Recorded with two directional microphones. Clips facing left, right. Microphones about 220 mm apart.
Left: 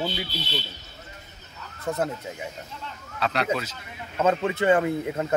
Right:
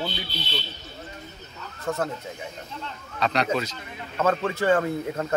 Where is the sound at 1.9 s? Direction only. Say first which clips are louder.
Even; 20° left (ahead or behind).